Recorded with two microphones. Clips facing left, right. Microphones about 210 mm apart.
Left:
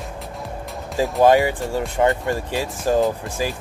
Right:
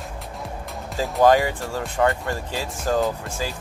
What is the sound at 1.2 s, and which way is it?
Speech, 15° left (ahead or behind).